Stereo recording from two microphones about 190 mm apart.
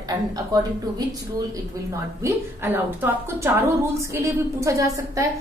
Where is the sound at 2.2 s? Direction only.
10° right (ahead or behind).